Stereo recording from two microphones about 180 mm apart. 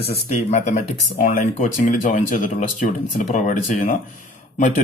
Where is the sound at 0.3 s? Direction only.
40° left (ahead or behind).